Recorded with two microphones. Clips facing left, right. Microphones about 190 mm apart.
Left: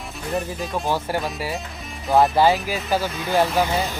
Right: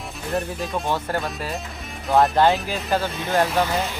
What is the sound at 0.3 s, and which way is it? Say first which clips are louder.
Speech: even; centre (ahead or behind).